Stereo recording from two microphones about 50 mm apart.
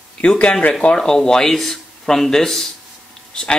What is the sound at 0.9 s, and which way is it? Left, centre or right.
A man's voice, centre.